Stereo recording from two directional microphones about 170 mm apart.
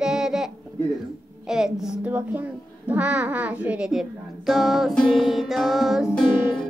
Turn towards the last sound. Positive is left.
turn(degrees=5)  # may be behind; listen again after turning